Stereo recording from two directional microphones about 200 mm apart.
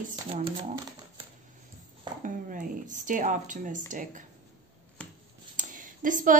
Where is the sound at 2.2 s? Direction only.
40° right (ahead or behind).